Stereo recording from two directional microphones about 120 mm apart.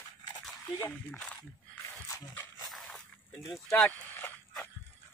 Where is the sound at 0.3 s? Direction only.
30° left (ahead or behind).